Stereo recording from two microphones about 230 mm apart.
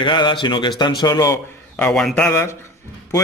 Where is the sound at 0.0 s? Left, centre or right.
Left.